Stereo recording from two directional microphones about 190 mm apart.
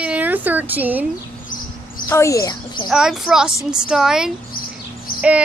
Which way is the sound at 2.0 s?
15° left (ahead or behind).